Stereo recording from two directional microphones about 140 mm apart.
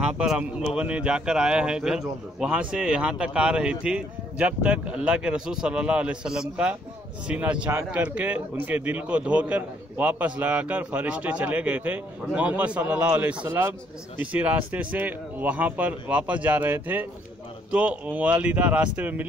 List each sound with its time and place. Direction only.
0.0 s a man's voice: 5° right (ahead or behind)